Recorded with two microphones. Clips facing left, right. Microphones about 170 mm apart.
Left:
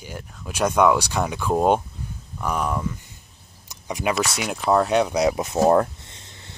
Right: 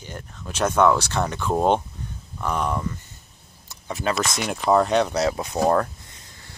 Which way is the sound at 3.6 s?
15° left (ahead or behind).